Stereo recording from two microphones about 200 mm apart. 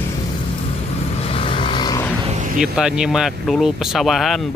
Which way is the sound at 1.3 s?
25° left (ahead or behind).